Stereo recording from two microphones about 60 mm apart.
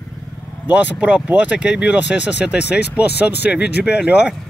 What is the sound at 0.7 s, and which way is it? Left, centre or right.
A man's voice, right.